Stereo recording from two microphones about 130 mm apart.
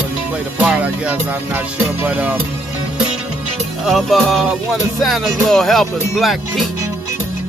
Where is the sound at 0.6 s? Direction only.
10° right (ahead or behind).